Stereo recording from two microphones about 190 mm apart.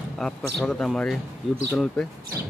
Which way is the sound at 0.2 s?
5° left (ahead or behind).